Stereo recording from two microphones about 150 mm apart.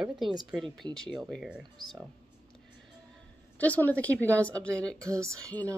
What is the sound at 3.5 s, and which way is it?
Speech, 10° left (ahead or behind).